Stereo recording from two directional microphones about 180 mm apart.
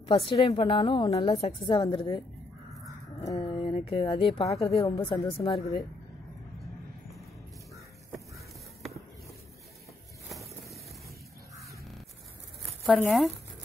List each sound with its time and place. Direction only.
0.3 s a woman's voice: 30° left (ahead or behind)
3.3 s speech: 30° left (ahead or behind)
4.6 s a woman's voice: 20° left (ahead or behind)
12.8 s speech: centre (ahead or behind)